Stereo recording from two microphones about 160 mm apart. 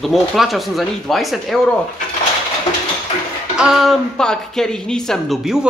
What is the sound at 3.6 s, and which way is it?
Speech, 5° right (ahead or behind).